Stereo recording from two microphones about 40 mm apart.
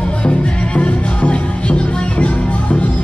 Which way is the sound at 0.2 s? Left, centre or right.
Left.